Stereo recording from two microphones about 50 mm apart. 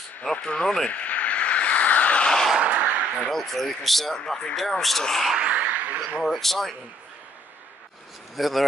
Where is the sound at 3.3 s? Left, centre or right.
Centre.